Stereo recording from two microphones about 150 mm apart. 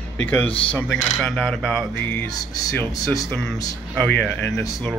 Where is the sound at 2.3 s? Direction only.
25° left (ahead or behind).